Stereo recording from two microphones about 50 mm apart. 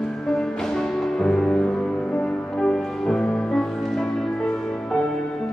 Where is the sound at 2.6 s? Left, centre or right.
Centre.